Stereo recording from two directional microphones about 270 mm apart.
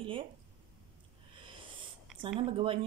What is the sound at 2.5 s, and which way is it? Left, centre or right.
Speech, centre.